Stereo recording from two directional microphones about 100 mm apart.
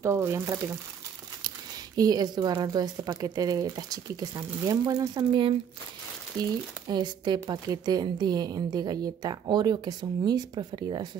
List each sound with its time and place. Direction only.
0.0 s speech: 30° right (ahead or behind)
2.0 s a woman's voice: 40° right (ahead or behind)